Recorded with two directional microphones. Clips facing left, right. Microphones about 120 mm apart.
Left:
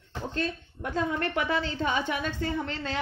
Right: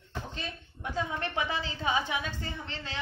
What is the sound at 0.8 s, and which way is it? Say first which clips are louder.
A woman's voice: left 5 dB; 60° left (ahead or behind).